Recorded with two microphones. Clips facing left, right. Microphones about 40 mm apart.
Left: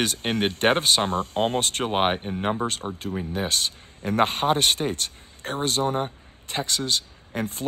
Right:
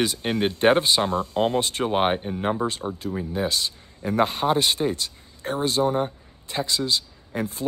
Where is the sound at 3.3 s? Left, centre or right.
Left.